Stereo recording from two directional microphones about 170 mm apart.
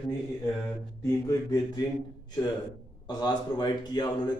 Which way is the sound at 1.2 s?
20° left (ahead or behind).